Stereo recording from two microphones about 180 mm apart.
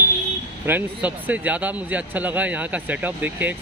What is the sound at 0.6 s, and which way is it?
Speech, 10° right (ahead or behind).